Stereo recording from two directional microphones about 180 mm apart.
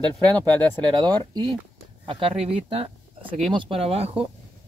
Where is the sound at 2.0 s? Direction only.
35° right (ahead or behind).